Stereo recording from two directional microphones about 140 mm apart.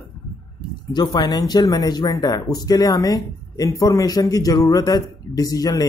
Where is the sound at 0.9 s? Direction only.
30° left (ahead or behind).